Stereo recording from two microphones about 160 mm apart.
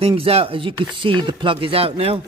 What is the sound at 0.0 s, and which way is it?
Speech, 35° right (ahead or behind).